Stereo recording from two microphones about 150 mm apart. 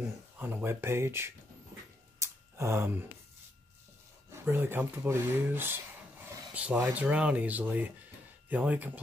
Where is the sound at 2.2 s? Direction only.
20° right (ahead or behind).